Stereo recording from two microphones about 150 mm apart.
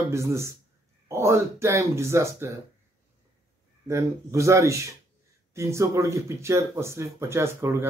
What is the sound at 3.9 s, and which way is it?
Speech, 20° right (ahead or behind).